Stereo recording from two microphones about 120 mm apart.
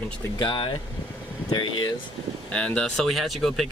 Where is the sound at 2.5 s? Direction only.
10° left (ahead or behind).